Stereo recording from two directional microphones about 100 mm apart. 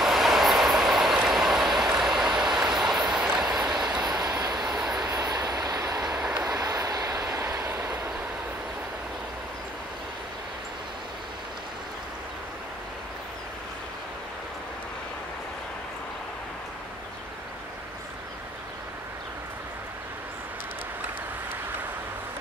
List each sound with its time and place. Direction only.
0.0 s train: centre (ahead or behind)
4.6 s vehicle: 5° right (ahead or behind)
5.1 s train: 40° right (ahead or behind)
5.9 s vehicle: 5° right (ahead or behind)
6.4 s vehicle: 40° right (ahead or behind)